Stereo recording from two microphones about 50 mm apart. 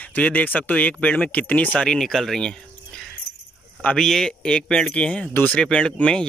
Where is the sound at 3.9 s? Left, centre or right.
Centre.